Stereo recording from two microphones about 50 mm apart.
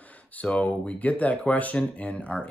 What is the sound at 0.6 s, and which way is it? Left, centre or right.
Speech, left.